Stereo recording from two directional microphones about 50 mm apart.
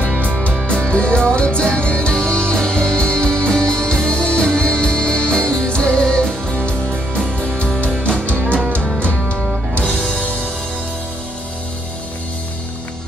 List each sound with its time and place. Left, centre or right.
0.7 s music: centre
9.0 s music: left